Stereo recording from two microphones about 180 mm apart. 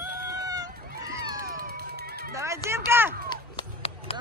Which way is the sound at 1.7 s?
60° right (ahead or behind).